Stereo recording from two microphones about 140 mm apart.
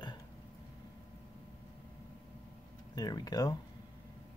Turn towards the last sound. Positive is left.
turn(degrees=25)  # may be behind; listen again after turning